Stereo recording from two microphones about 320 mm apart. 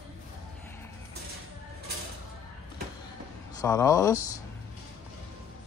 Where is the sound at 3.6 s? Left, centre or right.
Centre.